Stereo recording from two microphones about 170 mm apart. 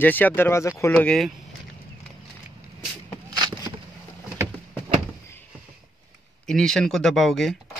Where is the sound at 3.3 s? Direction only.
20° right (ahead or behind).